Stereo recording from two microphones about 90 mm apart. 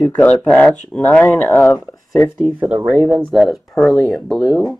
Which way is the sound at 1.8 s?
20° left (ahead or behind).